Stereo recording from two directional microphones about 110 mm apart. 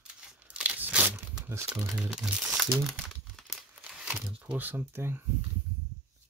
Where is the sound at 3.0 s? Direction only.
Centre (ahead or behind).